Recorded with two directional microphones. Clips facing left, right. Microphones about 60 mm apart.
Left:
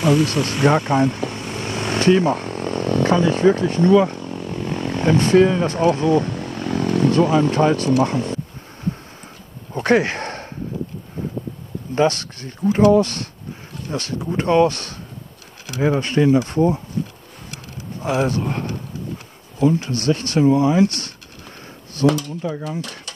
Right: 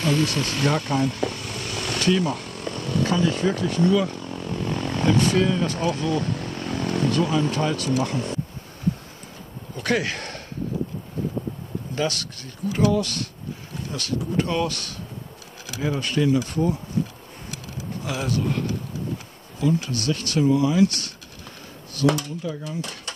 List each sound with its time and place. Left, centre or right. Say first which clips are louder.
0.0 s vehicle: left 5 dB; centre; by 7.9 s left
8.0 s speech: left 6 dB; left
9.8 s a sound: left 7 dB; left
11.9 s speech: left 9 dB; left
18.0 s speech: left 6 dB; left